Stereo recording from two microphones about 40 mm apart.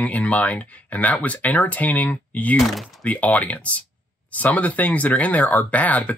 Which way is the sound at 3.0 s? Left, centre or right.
Left.